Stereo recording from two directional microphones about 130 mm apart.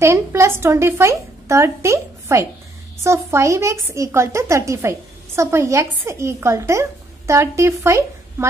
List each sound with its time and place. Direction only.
0.0 s a woman's voice: 20° right (ahead or behind)